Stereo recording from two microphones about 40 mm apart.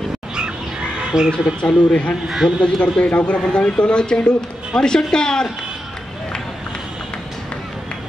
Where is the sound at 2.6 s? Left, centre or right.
Left.